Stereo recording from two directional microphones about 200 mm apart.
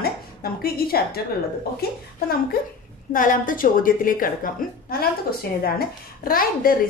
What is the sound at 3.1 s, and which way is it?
A woman's voice, 40° left (ahead or behind).